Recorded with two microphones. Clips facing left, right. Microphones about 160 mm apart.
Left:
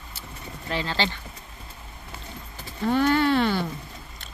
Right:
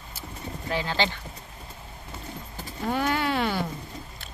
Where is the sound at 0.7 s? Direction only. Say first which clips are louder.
Even; 10° right (ahead or behind).